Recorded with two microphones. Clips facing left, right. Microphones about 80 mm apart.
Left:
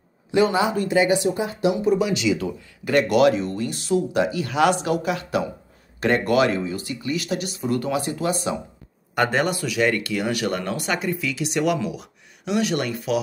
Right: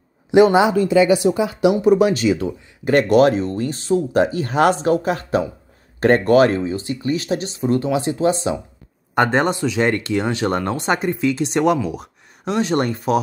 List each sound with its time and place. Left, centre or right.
0.3 s speech: right